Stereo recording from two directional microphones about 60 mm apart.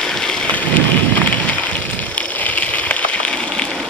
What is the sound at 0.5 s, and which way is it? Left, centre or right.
Thunder, left.